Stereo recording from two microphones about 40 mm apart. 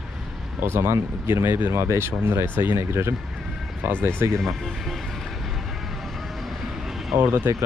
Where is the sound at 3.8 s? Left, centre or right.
Right.